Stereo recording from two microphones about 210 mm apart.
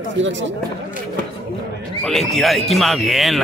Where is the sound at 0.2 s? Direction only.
60° right (ahead or behind).